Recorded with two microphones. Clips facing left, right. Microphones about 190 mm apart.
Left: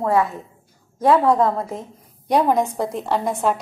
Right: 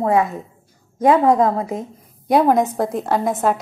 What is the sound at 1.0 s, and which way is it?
A woman's voice, 15° right (ahead or behind).